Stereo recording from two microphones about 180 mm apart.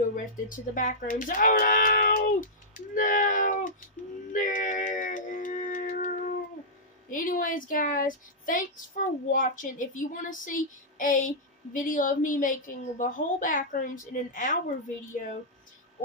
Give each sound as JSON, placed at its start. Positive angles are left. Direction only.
{"t": 0.1, "sound": "speech", "side_deg": 45}
{"t": 4.3, "sound": "a sound", "side_deg": 50}
{"t": 7.1, "sound": "a woman's voice", "side_deg": 50}